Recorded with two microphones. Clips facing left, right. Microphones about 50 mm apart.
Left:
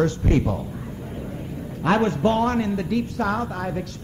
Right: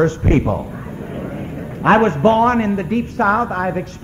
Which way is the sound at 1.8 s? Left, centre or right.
Right.